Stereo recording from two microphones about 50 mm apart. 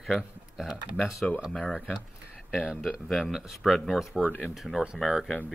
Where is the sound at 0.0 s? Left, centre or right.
Centre.